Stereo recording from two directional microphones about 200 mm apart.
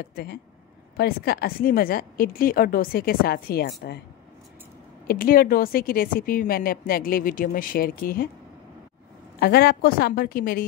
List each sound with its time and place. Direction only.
0.0 s a woman's voice: 55° left (ahead or behind)
5.0 s a woman's voice: 45° left (ahead or behind)
9.4 s a woman's voice: 50° left (ahead or behind)